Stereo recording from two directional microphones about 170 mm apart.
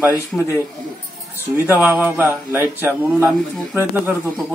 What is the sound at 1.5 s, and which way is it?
Speech, 10° right (ahead or behind).